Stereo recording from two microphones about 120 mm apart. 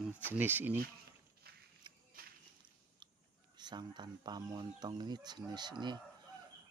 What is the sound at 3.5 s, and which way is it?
Speech, 35° right (ahead or behind).